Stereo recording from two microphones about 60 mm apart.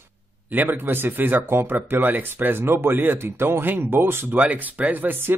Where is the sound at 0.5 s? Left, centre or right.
Right.